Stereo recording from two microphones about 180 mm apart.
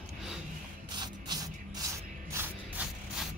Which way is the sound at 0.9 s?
20° right (ahead or behind).